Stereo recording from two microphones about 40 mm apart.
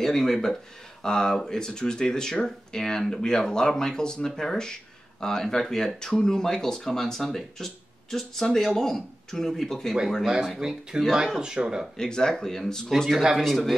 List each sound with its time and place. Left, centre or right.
0.0 s speech: centre
10.2 s speech: centre
12.0 s speech: centre
13.4 s a man's voice: centre